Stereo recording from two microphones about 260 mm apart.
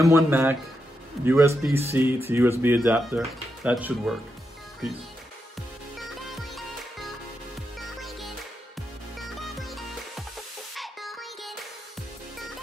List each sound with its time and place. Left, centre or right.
0.0 s speech: centre
5.9 s music: centre